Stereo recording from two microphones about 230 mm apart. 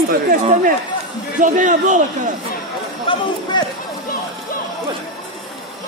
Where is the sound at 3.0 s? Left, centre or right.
Centre.